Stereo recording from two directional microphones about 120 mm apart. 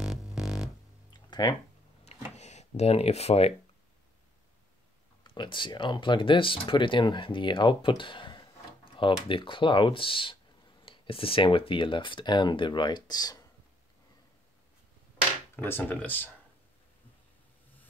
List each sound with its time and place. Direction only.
0.0 s music: 5° right (ahead or behind)
1.3 s speech: 35° left (ahead or behind)
2.0 s a sound: 70° left (ahead or behind)
5.2 s speech: 40° left (ahead or behind)
15.5 s speech: 20° left (ahead or behind)